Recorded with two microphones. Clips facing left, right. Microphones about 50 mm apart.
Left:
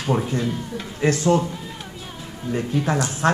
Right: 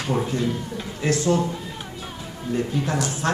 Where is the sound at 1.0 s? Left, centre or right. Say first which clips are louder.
Left 3 dB; left.